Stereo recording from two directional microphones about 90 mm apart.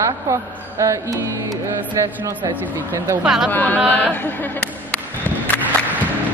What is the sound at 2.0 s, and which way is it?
A woman's voice, 30° right (ahead or behind).